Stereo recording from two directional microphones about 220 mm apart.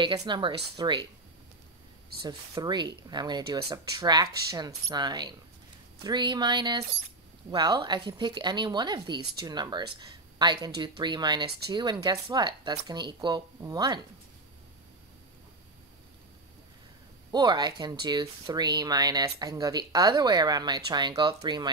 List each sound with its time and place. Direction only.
0.0 s speech: 20° right (ahead or behind)
2.2 s speech: 20° right (ahead or behind)
17.3 s speech: 20° right (ahead or behind)